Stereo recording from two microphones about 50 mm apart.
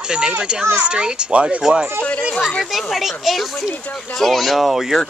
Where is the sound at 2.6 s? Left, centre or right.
Centre.